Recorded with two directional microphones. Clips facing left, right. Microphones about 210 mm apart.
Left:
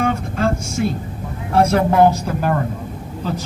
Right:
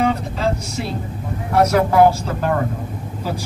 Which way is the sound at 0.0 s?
50° left (ahead or behind).